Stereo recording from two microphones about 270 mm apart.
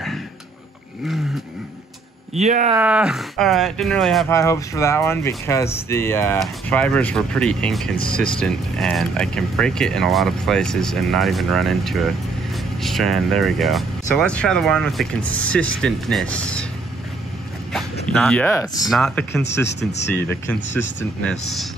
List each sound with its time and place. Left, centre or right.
2.3 s speech: right
2.8 s speech: centre
18.1 s speech: centre